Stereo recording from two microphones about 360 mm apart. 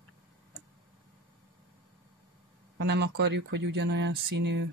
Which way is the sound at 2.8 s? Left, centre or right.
Right.